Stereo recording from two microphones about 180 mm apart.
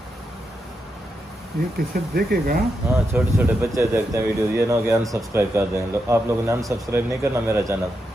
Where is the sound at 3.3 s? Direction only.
15° right (ahead or behind).